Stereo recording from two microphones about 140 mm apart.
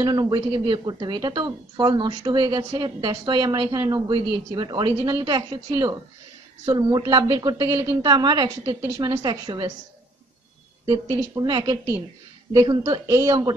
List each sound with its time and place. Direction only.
0.0 s a woman's voice: 30° right (ahead or behind)
10.9 s a woman's voice: 30° right (ahead or behind)